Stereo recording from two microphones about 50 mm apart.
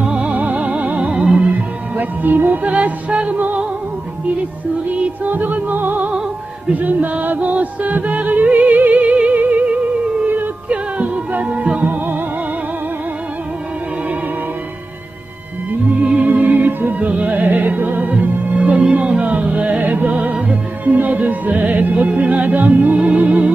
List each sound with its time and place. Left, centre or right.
0.0 s music: right
3.3 s music: right
5.0 s music: right
10.2 s yodeling: right
10.7 s music: right
16.0 s music: right